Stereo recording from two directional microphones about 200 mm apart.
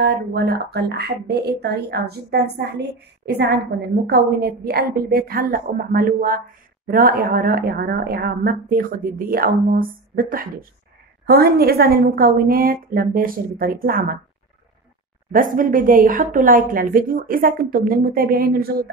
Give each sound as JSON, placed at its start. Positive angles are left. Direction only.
{"t": 0.0, "sound": "a woman's voice", "side_deg": -55}
{"t": 15.3, "sound": "a woman's voice", "side_deg": -45}